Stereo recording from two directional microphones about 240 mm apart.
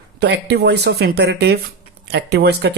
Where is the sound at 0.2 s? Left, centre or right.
Right.